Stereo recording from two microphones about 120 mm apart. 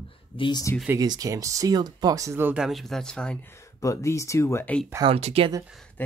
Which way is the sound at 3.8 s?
25° left (ahead or behind).